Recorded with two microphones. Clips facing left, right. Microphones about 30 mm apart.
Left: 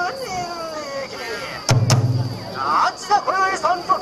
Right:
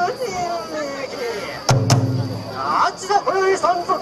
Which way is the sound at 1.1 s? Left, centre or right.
Centre.